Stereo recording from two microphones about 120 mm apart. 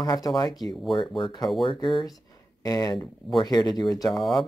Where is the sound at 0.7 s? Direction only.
Centre (ahead or behind).